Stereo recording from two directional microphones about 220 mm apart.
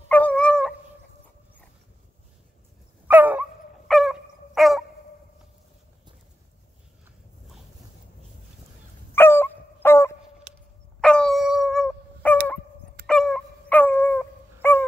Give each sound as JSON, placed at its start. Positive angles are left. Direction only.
{"t": 0.1, "sound": "dog", "side_deg": 5}
{"t": 3.1, "sound": "dog", "side_deg": -5}
{"t": 9.1, "sound": "dog", "side_deg": 10}
{"t": 10.5, "sound": "a sound", "side_deg": -30}
{"t": 11.0, "sound": "dog", "side_deg": 5}